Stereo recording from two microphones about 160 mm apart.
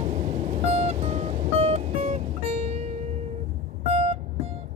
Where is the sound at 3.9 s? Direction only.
40° right (ahead or behind).